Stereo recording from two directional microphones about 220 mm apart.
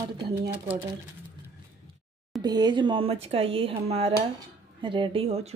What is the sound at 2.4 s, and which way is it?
Speech, 20° right (ahead or behind).